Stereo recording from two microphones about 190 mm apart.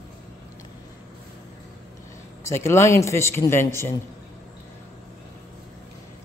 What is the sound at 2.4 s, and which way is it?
A man's voice, 15° left (ahead or behind).